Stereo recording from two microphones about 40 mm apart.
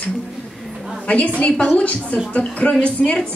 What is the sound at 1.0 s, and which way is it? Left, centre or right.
A woman's voice, left.